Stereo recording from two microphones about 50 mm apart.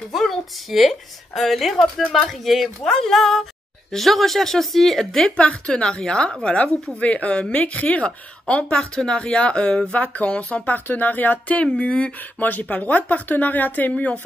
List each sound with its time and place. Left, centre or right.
0.1 s a woman's voice: centre
5.3 s speech: left
8.7 s speech: centre; by 14.1 s left